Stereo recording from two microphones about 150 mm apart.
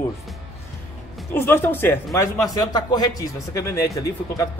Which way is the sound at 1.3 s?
15° left (ahead or behind).